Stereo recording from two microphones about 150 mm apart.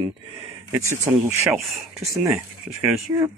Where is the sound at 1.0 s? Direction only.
20° right (ahead or behind).